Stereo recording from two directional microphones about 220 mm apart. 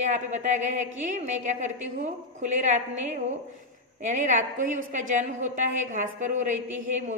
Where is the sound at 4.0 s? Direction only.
35° right (ahead or behind).